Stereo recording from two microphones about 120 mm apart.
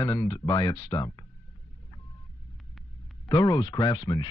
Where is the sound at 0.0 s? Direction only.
35° left (ahead or behind).